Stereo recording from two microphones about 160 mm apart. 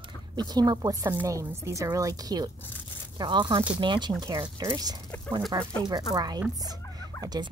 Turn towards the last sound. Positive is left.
turn(degrees=-25)  # may be behind; listen again after turning